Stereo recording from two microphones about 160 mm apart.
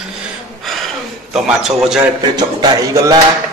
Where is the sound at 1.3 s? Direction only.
5° right (ahead or behind).